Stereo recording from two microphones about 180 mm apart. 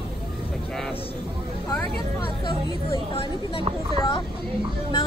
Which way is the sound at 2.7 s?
30° left (ahead or behind).